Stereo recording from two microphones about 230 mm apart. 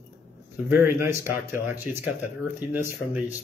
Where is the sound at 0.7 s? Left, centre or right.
Centre.